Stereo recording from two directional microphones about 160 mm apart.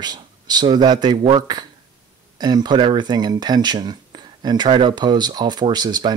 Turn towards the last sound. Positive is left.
turn(degrees=-25)  # may be behind; listen again after turning